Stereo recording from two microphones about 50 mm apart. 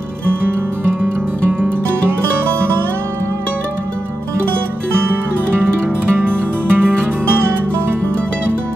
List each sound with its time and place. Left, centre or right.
5.1 s music: right